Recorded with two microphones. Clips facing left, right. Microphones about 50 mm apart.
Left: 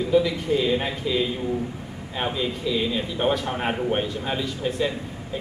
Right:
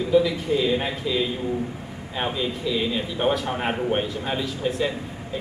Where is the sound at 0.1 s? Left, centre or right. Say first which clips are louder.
Right 1 dB; centre.